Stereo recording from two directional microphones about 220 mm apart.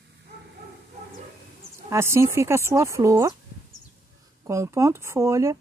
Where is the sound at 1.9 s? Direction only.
10° right (ahead or behind).